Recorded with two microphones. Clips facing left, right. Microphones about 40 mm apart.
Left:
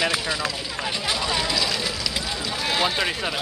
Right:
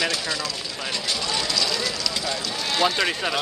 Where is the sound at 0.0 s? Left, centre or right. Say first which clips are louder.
Left 2 dB; centre.